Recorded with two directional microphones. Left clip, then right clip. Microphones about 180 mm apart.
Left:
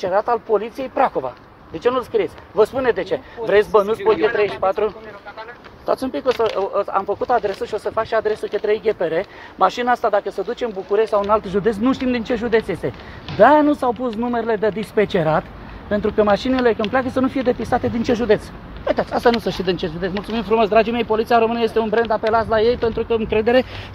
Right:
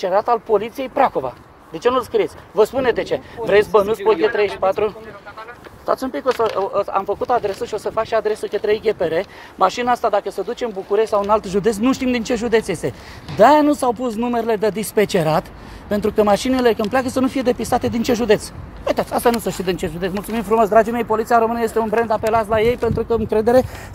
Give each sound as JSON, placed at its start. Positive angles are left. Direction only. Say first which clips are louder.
{"t": 0.0, "sound": "speech", "louder": "right 1 dB", "side_deg": -25}
{"t": 4.0, "sound": "speech", "louder": "right 1 dB", "side_deg": -35}
{"t": 5.9, "sound": "speech", "louder": "even", "side_deg": -10}
{"t": 6.7, "sound": "speech", "louder": "even", "side_deg": -30}
{"t": 20.0, "sound": "speech", "louder": "right 1 dB", "side_deg": -30}
{"t": 20.2, "sound": "speech", "louder": "right 1 dB", "side_deg": -15}
{"t": 21.9, "sound": "speech", "louder": "right 1 dB", "side_deg": -20}
{"t": 22.9, "sound": "speech", "louder": "right 1 dB", "side_deg": -35}